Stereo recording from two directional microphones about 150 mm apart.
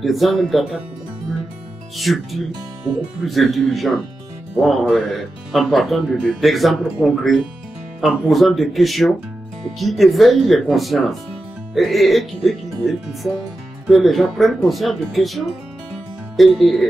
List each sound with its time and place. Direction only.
0.0 s speech: centre (ahead or behind)
2.0 s speech: centre (ahead or behind)